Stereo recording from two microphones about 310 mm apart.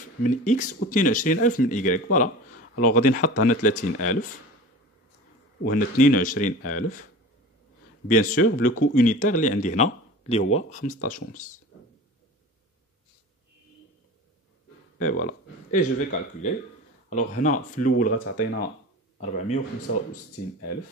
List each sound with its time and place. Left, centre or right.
0.2 s speech: left
5.7 s speech: left
8.1 s speech: left
15.0 s speech: left